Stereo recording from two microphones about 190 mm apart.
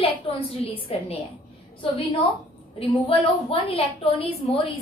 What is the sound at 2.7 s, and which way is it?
A woman's voice, 30° left (ahead or behind).